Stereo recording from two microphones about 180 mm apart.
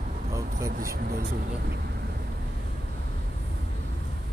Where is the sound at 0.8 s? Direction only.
55° right (ahead or behind).